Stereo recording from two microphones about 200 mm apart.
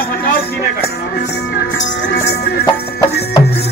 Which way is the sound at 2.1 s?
55° left (ahead or behind).